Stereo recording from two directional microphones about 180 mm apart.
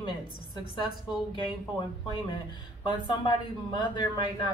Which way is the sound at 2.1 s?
25° left (ahead or behind).